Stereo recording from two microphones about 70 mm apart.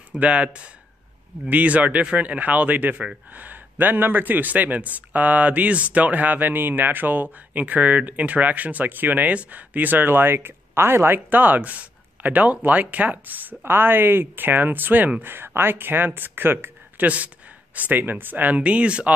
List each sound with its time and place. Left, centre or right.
0.2 s a man's voice: centre